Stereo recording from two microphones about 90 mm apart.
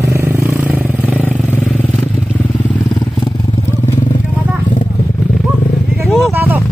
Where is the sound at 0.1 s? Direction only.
25° right (ahead or behind).